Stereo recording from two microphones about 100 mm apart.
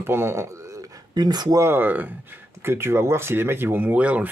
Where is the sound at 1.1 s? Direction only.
45° right (ahead or behind).